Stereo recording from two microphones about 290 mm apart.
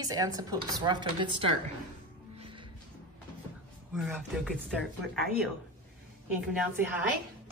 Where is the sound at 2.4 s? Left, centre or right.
Centre.